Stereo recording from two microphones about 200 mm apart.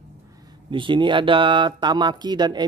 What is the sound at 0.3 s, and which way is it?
Speech, 20° right (ahead or behind).